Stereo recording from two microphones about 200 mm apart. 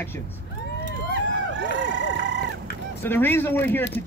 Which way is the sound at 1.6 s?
60° right (ahead or behind).